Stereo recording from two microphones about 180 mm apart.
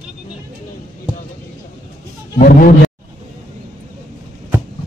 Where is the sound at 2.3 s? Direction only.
50° left (ahead or behind).